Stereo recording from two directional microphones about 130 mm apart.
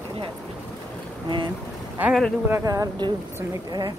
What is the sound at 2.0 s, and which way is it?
A woman's voice, 15° right (ahead or behind).